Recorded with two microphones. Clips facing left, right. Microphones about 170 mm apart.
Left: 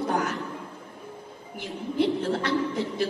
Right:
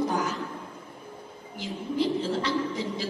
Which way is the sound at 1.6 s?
60° left (ahead or behind).